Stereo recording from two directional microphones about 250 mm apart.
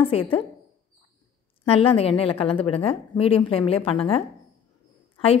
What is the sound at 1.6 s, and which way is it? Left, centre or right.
Speech, left.